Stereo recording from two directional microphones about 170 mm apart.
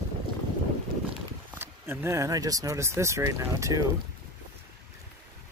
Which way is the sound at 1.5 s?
15° right (ahead or behind).